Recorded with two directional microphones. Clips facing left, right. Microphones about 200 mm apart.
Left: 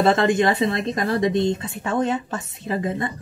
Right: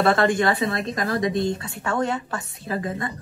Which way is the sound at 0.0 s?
20° left (ahead or behind).